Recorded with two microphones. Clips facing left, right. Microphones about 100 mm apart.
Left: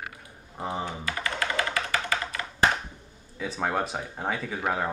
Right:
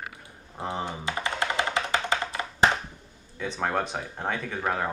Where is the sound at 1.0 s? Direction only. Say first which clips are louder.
Right 1 dB; 25° right (ahead or behind).